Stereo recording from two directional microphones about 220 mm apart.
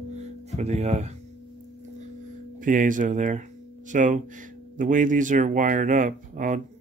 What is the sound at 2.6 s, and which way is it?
Speech, 35° right (ahead or behind).